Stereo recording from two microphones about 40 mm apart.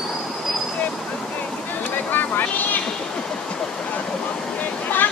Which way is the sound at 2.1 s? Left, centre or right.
Left.